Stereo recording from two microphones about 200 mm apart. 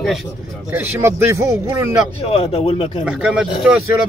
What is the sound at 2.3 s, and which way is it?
Speech, 30° left (ahead or behind).